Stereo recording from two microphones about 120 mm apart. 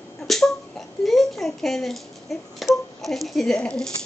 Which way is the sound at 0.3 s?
Centre (ahead or behind).